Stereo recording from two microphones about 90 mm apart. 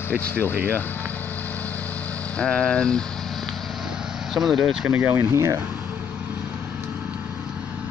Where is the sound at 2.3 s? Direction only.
15° left (ahead or behind).